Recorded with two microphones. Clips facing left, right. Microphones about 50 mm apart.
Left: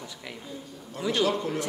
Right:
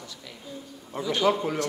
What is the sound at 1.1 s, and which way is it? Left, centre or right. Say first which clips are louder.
Speech: right 2 dB; centre.